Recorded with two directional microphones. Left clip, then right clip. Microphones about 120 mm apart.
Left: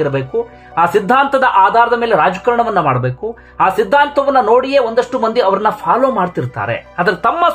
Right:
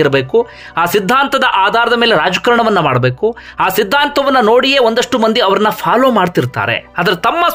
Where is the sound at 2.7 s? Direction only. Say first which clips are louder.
Right 2 dB; 20° right (ahead or behind).